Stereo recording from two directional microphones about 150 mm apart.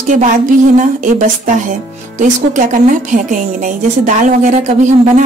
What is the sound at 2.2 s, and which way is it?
Speech, 60° right (ahead or behind).